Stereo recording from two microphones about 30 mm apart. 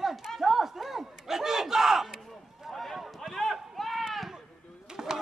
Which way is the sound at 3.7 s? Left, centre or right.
Centre.